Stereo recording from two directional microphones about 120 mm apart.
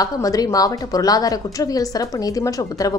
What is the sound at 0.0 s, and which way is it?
A woman's voice, 30° left (ahead or behind).